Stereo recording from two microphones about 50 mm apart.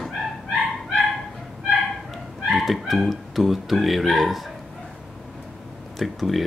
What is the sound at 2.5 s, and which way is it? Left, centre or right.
Speech, centre.